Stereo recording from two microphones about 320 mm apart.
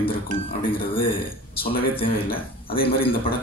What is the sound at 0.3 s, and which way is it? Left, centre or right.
A man's voice, centre.